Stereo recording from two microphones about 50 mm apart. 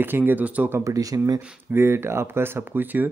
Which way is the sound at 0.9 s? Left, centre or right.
Right.